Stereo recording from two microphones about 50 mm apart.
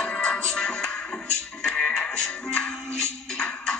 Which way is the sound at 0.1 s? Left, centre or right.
Centre.